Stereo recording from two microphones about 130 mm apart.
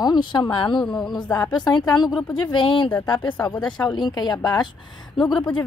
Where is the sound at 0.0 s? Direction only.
35° left (ahead or behind).